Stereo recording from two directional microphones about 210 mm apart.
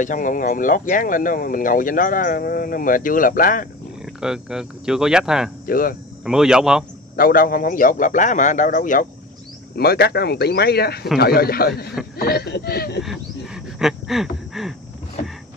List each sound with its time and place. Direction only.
0.0 s speech: 40° left (ahead or behind)
4.0 s speech: 5° right (ahead or behind)
5.7 s speech: 40° left (ahead or behind)
6.2 s speech: 5° right (ahead or behind)
7.2 s speech: 40° left (ahead or behind)
13.7 s a sound: centre (ahead or behind)